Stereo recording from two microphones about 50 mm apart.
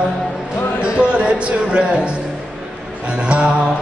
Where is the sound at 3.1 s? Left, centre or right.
Right.